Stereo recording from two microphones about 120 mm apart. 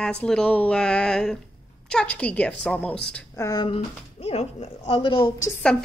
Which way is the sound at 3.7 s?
60° left (ahead or behind).